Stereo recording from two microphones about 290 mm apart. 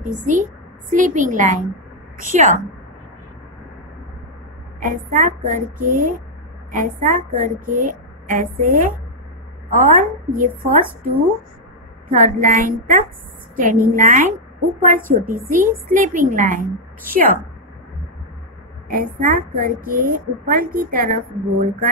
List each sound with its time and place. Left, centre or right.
0.0 s a woman's voice: right
4.7 s a woman's voice: right
18.9 s a woman's voice: right